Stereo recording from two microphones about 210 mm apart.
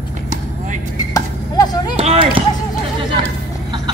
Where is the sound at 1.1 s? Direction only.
20° left (ahead or behind).